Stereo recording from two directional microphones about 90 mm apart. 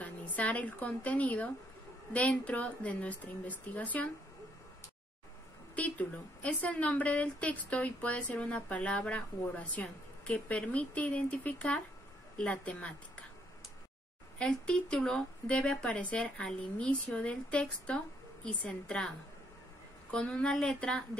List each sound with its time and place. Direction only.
0.0 s a woman's voice: 15° left (ahead or behind)
5.8 s a woman's voice: 15° left (ahead or behind)
14.4 s a woman's voice: 10° left (ahead or behind)